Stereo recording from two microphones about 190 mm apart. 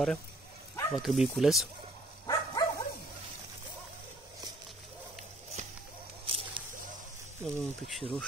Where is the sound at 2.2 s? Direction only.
20° left (ahead or behind).